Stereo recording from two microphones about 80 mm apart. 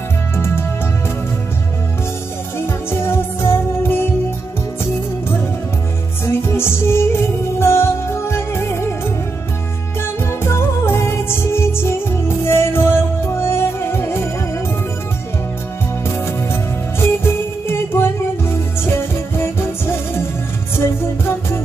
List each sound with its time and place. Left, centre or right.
2.6 s music: left
6.2 s music: left
10.2 s music: left
17.0 s music: left